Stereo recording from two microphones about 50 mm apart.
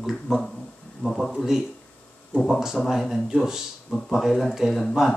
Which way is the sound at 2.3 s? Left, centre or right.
Right.